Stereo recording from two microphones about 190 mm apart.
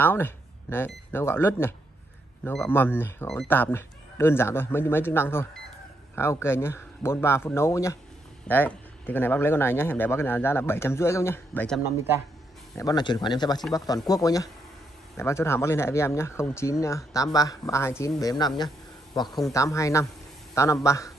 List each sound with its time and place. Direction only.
0.0 s speech: 10° left (ahead or behind)
12.7 s speech: 20° left (ahead or behind)